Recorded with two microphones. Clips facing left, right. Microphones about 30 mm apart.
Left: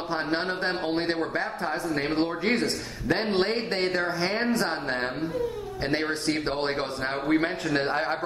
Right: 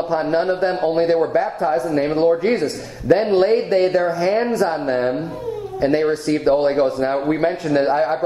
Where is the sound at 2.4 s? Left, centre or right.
Left.